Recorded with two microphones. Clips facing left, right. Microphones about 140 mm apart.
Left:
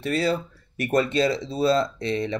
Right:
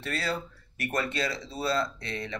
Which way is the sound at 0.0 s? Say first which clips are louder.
Left 8 dB; 15° left (ahead or behind).